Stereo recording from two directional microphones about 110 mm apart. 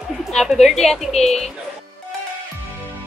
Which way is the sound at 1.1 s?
80° left.